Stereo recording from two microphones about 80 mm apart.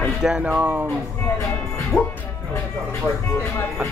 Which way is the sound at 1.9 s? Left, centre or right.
Centre.